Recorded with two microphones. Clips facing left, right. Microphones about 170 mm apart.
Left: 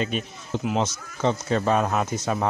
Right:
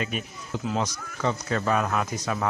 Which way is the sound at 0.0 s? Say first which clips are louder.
Left 4 dB; 25° left (ahead or behind).